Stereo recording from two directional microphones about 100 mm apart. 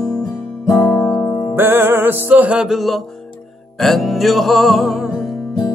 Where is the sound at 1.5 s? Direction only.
20° right (ahead or behind); by 5.3 s centre (ahead or behind).